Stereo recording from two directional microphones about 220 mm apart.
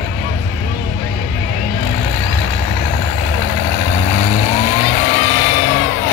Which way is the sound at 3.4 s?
35° left (ahead or behind).